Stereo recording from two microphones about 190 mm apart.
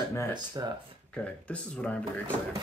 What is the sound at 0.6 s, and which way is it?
Speech, 20° right (ahead or behind).